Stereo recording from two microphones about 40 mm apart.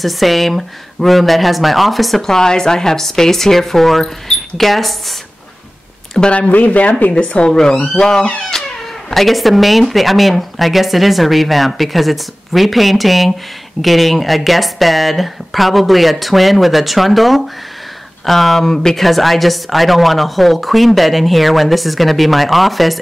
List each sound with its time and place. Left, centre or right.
0.0 s speech: centre
2.2 s speech: centre
6.2 s speech: left
6.5 s speech: left
7.1 s speech: left
7.5 s speech: centre
8.5 s cat: centre
9.1 s speech: centre
19.0 s speech: centre